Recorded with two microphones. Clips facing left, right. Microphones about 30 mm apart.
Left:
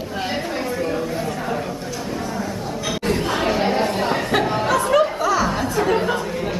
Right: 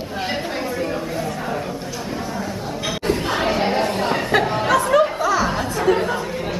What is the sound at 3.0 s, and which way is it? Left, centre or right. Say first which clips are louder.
Chatter: even; centre.